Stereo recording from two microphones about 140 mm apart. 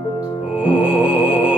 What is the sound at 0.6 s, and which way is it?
Music, 10° right (ahead or behind).